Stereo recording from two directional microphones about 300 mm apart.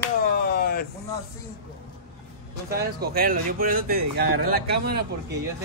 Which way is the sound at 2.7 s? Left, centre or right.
Right.